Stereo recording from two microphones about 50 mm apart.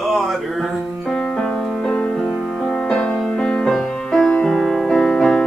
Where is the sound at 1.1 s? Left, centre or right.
Centre.